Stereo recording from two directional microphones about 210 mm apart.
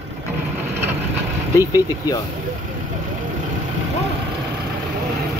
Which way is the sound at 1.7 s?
15° left (ahead or behind).